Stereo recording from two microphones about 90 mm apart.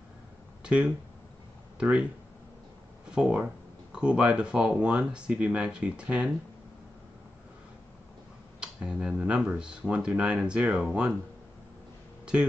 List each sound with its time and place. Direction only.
0.7 s speech: 10° right (ahead or behind)
3.1 s speech: 10° right (ahead or behind)
8.5 s speech: 10° right (ahead or behind)